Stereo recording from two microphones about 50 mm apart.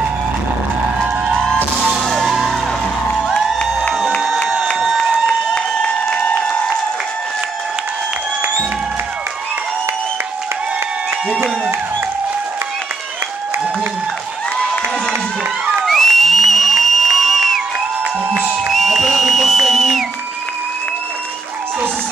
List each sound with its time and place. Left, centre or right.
2.0 s music: centre
5.2 s applause: centre
14.6 s a sound: centre
15.8 s music: centre
18.7 s music: centre